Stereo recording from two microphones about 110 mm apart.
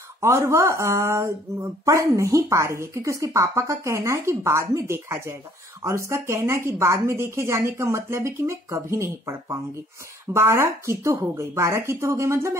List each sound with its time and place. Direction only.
0.2 s speech: 25° right (ahead or behind)